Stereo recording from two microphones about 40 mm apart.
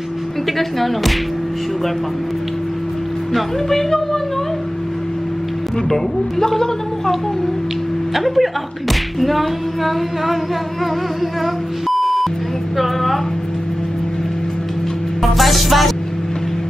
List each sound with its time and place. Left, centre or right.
0.6 s speech: centre
3.3 s a woman's voice: centre
6.4 s a woman's voice: centre
8.1 s speech: centre
12.0 s beep: centre
12.7 s speech: centre
15.3 s speech: centre